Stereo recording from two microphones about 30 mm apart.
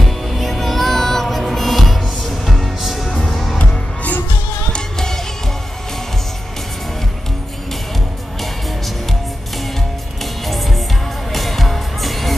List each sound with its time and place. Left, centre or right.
0.0 s music: centre
3.5 s music: left
4.9 s music: centre
10.4 s music: centre